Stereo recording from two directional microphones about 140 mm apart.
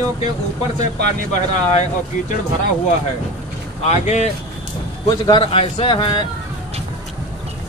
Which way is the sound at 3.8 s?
55° left (ahead or behind).